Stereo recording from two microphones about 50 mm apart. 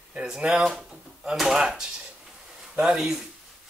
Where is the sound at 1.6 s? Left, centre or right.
Centre.